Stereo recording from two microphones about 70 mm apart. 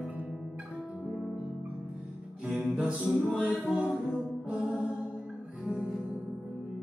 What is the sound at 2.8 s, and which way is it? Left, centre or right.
Music, centre.